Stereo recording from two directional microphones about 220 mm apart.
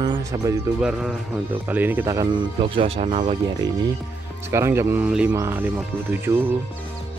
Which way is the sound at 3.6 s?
20° right (ahead or behind).